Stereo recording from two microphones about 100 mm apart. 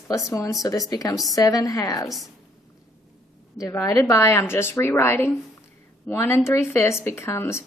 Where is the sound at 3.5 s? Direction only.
35° left (ahead or behind).